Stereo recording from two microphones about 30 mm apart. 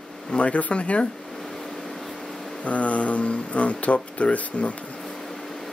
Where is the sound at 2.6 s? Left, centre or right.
Left.